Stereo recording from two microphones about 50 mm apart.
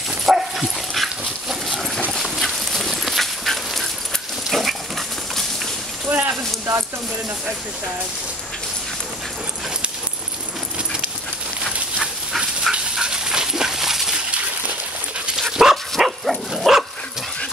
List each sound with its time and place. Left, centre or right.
0.2 s dog: centre
6.0 s a sound: right
11.6 s dog: centre
15.5 s dog: centre